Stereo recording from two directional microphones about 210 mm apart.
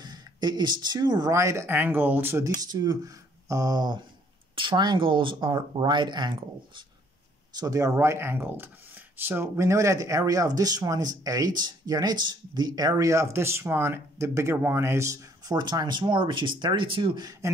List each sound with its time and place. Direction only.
0.0 s speech: 20° right (ahead or behind)